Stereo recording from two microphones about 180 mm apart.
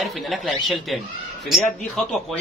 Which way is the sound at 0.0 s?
Centre (ahead or behind).